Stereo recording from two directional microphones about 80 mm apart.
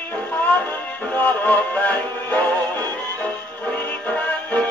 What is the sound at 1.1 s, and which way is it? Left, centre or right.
Music, left.